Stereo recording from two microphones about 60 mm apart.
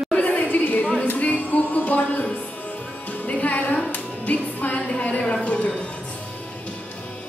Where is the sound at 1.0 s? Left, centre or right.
Left.